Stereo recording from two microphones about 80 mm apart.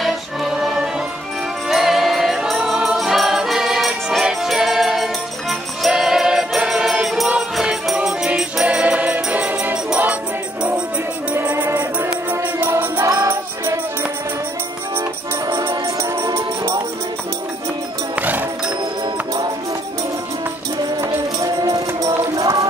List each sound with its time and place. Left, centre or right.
0.0 s music: centre
11.3 s music: right
16.3 s music: right
18.1 s music: right
21.0 s music: right